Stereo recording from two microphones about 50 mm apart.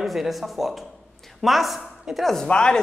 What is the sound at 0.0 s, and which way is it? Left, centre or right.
Speech, centre.